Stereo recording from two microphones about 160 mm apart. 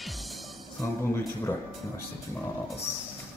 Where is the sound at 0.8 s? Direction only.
15° left (ahead or behind).